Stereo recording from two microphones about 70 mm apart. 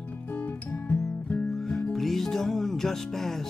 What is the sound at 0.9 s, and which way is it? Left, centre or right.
Music, centre.